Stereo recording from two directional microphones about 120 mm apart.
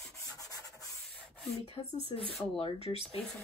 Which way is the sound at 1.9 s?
55° left (ahead or behind).